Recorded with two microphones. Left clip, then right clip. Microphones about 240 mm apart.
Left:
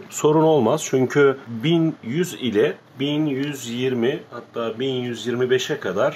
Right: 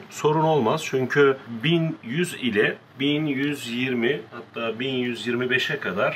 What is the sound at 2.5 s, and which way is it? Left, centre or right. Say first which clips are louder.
Speech: left 3 dB; left.